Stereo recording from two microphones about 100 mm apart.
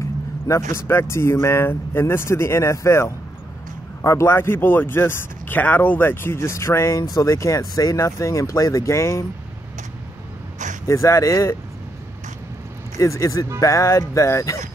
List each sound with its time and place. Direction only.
0.5 s speech: 30° left (ahead or behind)
10.9 s speech: 30° left (ahead or behind)
12.9 s speech: 30° left (ahead or behind)